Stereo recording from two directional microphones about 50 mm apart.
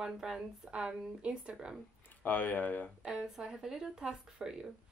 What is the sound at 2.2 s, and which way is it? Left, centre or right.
Speech, left.